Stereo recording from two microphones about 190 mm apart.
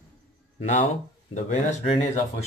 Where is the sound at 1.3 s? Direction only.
40° left (ahead or behind).